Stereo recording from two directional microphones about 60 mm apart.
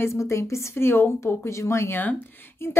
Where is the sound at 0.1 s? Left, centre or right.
Left.